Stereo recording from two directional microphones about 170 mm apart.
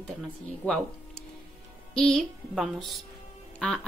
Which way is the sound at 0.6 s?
10° left (ahead or behind).